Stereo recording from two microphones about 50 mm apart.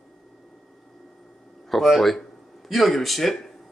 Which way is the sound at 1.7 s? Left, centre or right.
Centre.